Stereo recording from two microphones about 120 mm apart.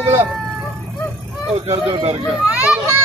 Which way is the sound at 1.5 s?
55° right (ahead or behind).